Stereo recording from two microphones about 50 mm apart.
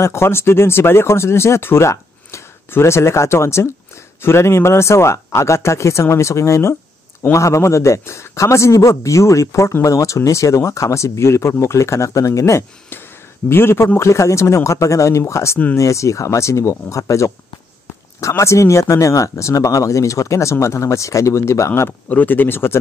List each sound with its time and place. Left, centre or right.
0.0 s speech: left
2.3 s a sound: left
2.7 s speech: left
12.9 s a sound: left
13.9 s speech: left
15.7 s speech: left
18.3 s speech: left
22.1 s speech: left